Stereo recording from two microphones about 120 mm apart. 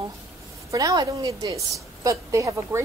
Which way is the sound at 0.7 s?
30° right (ahead or behind).